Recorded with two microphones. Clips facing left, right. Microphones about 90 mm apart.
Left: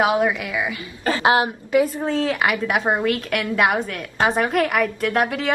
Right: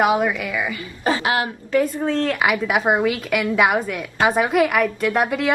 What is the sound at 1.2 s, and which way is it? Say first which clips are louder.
Speech: left 4 dB; 25° left (ahead or behind).